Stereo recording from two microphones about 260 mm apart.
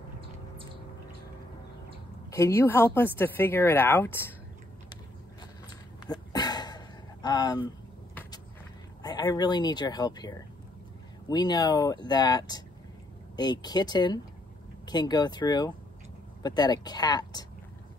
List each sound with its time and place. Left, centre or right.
2.3 s speech: centre
5.7 s a sound: centre
9.0 s speech: centre